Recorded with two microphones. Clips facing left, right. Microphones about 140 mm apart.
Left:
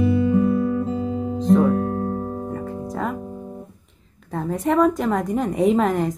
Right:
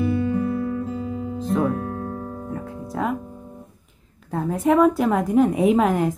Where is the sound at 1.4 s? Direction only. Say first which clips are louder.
Left 6 dB; centre (ahead or behind).